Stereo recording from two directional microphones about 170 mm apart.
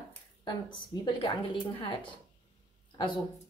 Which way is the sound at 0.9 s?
25° left (ahead or behind).